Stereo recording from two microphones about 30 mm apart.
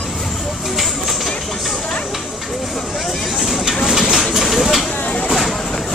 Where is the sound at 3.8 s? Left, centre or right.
Centre.